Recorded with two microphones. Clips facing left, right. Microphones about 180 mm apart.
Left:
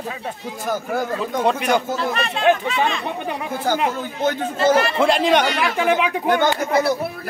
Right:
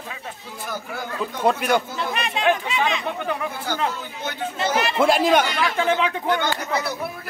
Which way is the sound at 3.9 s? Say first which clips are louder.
Left 9 dB; 50° left (ahead or behind).